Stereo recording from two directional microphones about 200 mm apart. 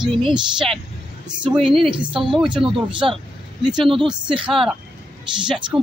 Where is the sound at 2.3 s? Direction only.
5° right (ahead or behind).